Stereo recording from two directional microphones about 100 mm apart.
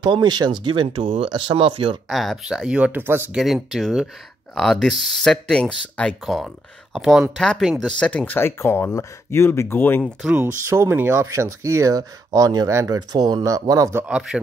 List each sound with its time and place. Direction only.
0.0 s speech: 45° right (ahead or behind); by 1.3 s 75° right (ahead or behind)
1.3 s speech: 55° right (ahead or behind)
2.0 s speech: centre (ahead or behind); by 3.3 s 20° right (ahead or behind)
3.3 s speech: 5° right (ahead or behind)
8.0 s speech: 15° left (ahead or behind)
10.0 s speech: 15° right (ahead or behind)
10.6 s speech: 30° right (ahead or behind)
14.0 s speech: 10° right (ahead or behind)